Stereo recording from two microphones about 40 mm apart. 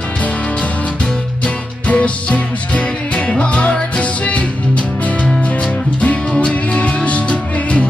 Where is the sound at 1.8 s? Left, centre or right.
Left.